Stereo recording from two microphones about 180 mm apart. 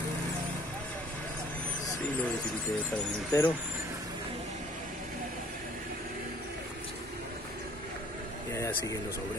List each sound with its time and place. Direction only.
3.3 s speech: 20° left (ahead or behind)
8.5 s speech: 15° left (ahead or behind)